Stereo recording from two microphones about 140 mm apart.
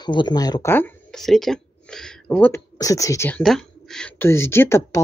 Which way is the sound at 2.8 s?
25° left (ahead or behind).